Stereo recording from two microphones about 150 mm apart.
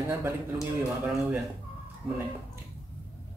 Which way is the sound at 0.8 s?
5° right (ahead or behind).